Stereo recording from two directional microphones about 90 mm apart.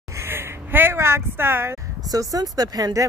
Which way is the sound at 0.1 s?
30° right (ahead or behind).